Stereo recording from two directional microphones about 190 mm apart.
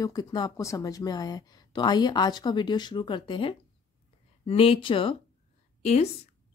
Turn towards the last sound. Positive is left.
turn(degrees=35)  # may be behind; listen again after turning